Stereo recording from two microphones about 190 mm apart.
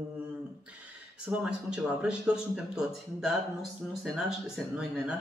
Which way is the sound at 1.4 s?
5° right (ahead or behind).